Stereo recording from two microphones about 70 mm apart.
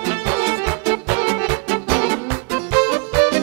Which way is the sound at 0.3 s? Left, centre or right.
Right.